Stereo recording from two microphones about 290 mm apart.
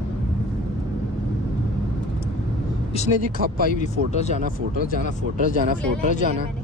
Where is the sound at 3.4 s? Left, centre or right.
Right.